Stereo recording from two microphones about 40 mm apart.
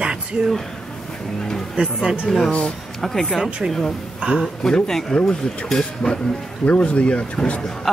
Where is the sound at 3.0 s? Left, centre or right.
Centre.